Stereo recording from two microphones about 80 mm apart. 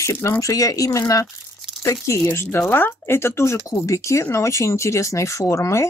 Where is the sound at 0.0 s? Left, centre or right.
Left.